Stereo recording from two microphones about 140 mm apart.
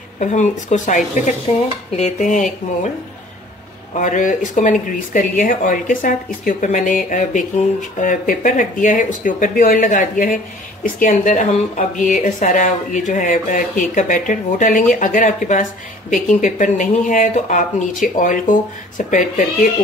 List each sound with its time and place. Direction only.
0.2 s speech: 55° left (ahead or behind)
3.9 s speech: 65° left (ahead or behind)